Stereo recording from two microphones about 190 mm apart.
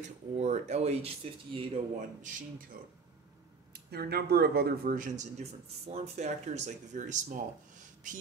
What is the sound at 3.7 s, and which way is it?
Speech, 55° right (ahead or behind).